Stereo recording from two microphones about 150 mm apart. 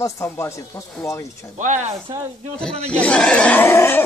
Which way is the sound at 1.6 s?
55° right (ahead or behind).